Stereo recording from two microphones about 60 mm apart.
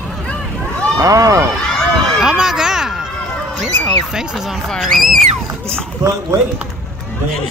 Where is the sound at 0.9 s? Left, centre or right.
Right.